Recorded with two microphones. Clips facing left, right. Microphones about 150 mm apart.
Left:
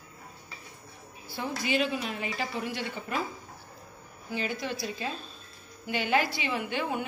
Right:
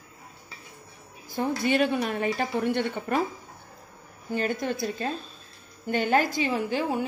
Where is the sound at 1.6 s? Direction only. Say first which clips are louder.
Right 4 dB; 55° right (ahead or behind).